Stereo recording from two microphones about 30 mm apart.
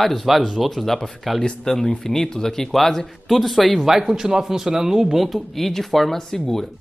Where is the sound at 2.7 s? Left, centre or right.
Centre.